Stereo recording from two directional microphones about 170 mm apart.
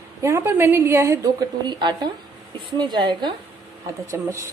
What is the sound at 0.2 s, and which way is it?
A woman's voice, 15° right (ahead or behind).